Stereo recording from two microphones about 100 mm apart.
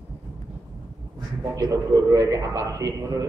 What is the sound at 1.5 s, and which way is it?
A man's voice, 35° right (ahead or behind).